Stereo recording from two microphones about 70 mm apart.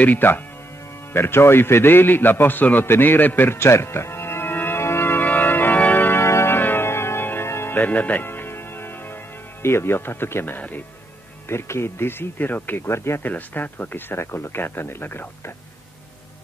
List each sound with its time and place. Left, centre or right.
0.0 s speech: left
1.1 s a sound: left
7.8 s music: left
11.4 s speech: left
13.2 s speech: left